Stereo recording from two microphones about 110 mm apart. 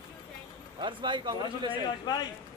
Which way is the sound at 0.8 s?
45° right (ahead or behind).